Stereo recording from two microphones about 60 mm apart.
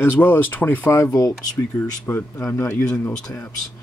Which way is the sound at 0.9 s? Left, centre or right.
Left.